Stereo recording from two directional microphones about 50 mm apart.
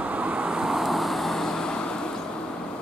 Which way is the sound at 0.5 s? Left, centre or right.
Centre.